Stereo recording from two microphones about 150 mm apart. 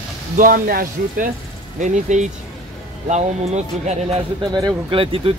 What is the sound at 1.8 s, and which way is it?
Speech, 55° right (ahead or behind).